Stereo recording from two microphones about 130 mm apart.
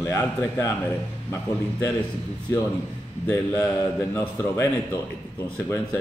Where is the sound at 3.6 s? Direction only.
25° left (ahead or behind).